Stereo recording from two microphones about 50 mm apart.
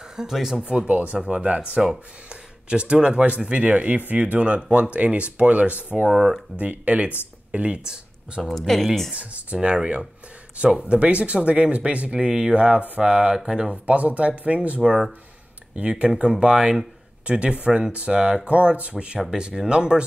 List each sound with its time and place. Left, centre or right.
0.0 s speech: centre; by 6.0 s right
6.0 s speech: centre
6.6 s speech: right
8.4 s speech: centre
9.1 s speech: right
14.8 s speech: centre